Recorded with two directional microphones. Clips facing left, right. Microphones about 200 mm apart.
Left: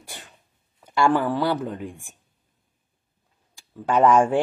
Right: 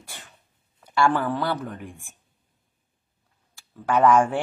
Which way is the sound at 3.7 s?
15° left (ahead or behind).